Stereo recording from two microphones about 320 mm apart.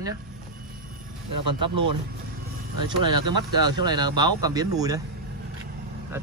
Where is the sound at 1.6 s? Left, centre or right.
Centre.